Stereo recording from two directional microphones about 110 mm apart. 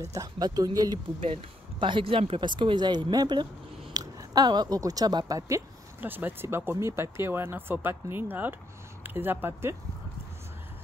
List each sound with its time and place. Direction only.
0.0 s speech: 30° right (ahead or behind)
1.2 s speech: 50° right (ahead or behind); by 5.6 s 35° right (ahead or behind)
5.9 s speech: 15° right (ahead or behind)